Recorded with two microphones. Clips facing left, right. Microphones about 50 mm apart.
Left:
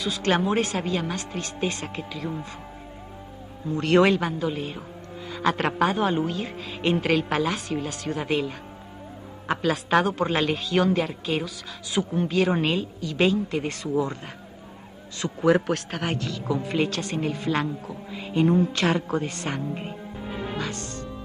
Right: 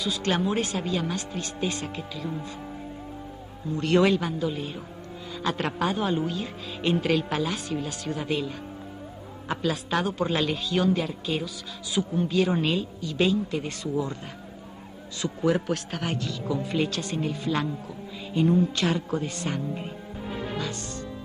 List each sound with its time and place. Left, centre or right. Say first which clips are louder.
0.0 s a man's voice: left 2 dB; left
1.1 s speech: left 1 dB; left
1.6 s a man's voice: left 1 dB; left
3.7 s speech: left 3 dB; left
4.0 s a man's voice: left 2 dB; left
8.1 s a man's voice: left 3 dB; left
13.0 s a man's voice: left 2 dB; left
15.1 s a man's voice: left 4 dB; left
16.4 s speech: left 2 dB; left
16.9 s a man's voice: left 2 dB; left